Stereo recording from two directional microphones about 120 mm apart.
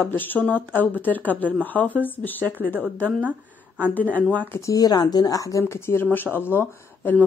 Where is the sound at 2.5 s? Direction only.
15° right (ahead or behind).